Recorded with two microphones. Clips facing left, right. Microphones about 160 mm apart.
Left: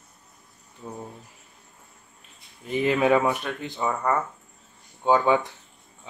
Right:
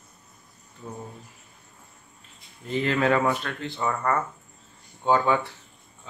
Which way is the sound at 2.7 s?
15° left (ahead or behind).